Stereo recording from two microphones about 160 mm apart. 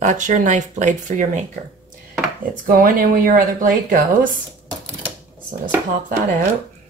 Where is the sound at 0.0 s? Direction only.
50° right (ahead or behind).